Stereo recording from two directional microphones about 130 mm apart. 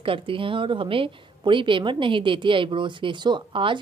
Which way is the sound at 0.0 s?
40° right (ahead or behind).